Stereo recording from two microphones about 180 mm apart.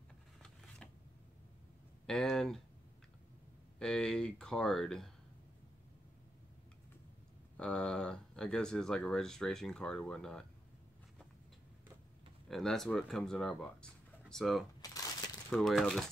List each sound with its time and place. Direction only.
0.4 s scissors: 5° left (ahead or behind)
2.0 s a sound: centre (ahead or behind)
3.8 s speech: 5° left (ahead or behind)
7.5 s speech: 5° left (ahead or behind)
12.4 s speech: centre (ahead or behind)
14.8 s a sound: 20° left (ahead or behind)
15.5 s speech: centre (ahead or behind)